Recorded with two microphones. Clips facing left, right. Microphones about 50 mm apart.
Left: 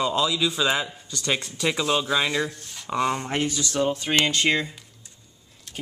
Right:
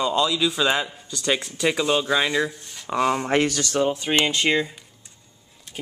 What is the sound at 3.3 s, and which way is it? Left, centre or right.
Speech, right.